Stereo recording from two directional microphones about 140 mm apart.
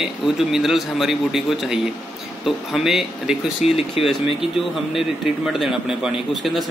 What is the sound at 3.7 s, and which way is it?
Speech, 45° left (ahead or behind).